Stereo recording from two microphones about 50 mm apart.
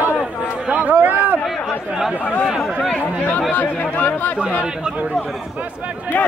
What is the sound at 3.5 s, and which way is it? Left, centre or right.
Speech, left.